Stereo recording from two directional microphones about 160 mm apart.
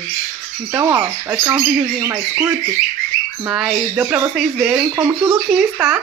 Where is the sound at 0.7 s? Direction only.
15° right (ahead or behind).